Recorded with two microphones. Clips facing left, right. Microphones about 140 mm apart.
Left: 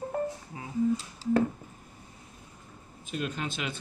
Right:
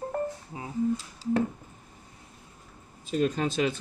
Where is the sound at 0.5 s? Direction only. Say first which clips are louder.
Right 3 dB; 25° right (ahead or behind).